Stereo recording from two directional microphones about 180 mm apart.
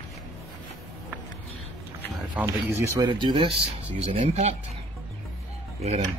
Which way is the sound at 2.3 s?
15° right (ahead or behind).